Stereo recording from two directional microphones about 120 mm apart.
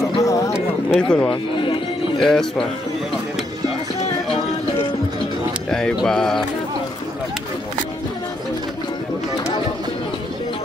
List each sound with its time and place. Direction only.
0.2 s music: 30° left (ahead or behind)
0.9 s speech: 10° left (ahead or behind)
1.3 s music: 45° left (ahead or behind)
2.1 s speech: 5° left (ahead or behind)
5.7 s a sound: 5° left (ahead or behind)
5.9 s speech: 5° left (ahead or behind)